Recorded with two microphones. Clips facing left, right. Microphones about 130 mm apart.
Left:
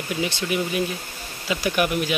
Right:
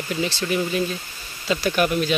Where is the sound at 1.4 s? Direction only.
15° left (ahead or behind).